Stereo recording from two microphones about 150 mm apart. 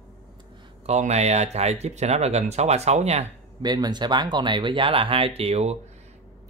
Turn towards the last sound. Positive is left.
turn(degrees=-45)  # may be behind; listen again after turning